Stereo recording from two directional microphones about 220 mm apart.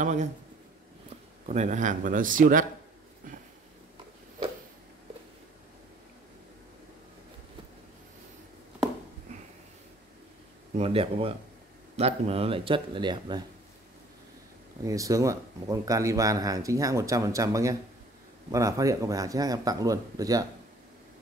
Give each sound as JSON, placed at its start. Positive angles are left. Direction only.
{"t": 0.0, "sound": "speech", "side_deg": -35}
{"t": 1.5, "sound": "speech", "side_deg": -35}
{"t": 3.2, "sound": "a sound", "side_deg": -35}
{"t": 10.8, "sound": "speech", "side_deg": -25}
{"t": 14.9, "sound": "speech", "side_deg": -15}